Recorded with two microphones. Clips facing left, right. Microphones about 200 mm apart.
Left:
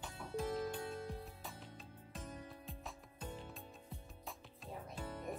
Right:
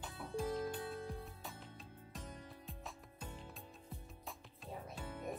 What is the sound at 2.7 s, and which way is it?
Music, centre (ahead or behind).